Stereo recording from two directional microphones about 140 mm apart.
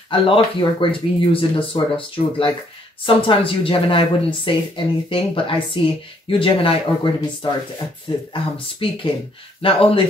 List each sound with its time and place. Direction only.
0.1 s speech: 40° left (ahead or behind)